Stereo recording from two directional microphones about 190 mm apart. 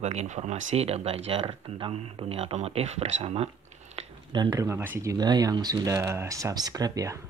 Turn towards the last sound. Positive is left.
turn(degrees=-20)  # may be behind; listen again after turning